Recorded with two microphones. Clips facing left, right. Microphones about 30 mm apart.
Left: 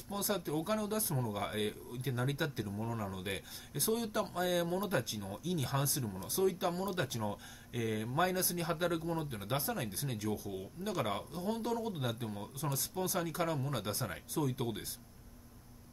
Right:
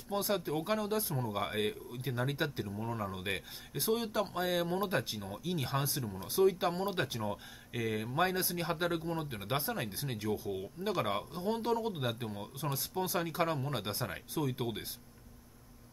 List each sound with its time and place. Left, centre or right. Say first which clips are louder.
0.1 s speech: right 3 dB; centre
1.4 s speech: right 2 dB; centre
6.1 s speech: right 5 dB; right
7.0 s speech: right 2 dB; centre
11.0 s speech: even; centre
12.0 s speech: right 2 dB; centre